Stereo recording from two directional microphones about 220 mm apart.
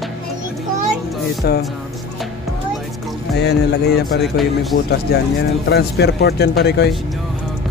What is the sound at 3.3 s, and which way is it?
Speech, 50° left (ahead or behind).